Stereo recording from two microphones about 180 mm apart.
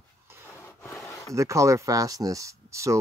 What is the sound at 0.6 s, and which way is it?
Rub, 15° left (ahead or behind).